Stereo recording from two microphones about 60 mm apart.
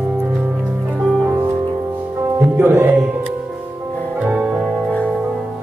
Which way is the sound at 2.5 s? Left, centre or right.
Right.